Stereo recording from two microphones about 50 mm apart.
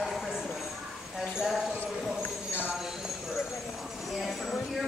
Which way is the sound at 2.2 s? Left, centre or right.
Left.